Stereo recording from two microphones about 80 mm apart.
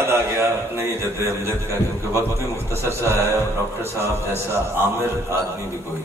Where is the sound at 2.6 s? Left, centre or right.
Right.